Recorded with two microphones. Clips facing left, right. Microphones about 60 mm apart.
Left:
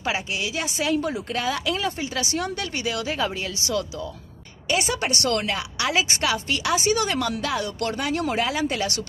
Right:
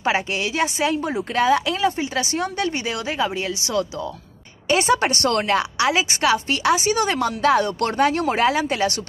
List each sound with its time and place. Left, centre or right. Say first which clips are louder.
0.0 s speech: right 5 dB; right
4.6 s speech: right 6 dB; right